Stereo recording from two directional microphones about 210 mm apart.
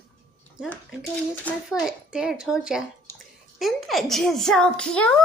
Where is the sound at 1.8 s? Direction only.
5° right (ahead or behind).